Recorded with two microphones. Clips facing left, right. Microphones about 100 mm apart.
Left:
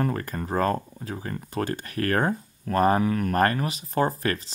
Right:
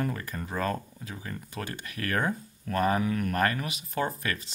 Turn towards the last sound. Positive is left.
turn(degrees=35)  # may be behind; listen again after turning